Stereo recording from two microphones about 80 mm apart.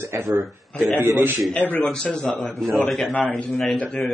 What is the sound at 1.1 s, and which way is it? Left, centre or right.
Speech, right.